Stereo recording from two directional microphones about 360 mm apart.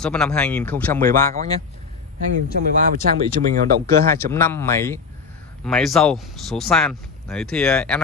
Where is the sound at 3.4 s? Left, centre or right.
Right.